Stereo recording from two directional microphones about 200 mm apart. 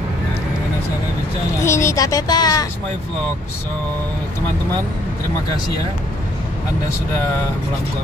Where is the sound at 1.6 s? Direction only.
15° left (ahead or behind).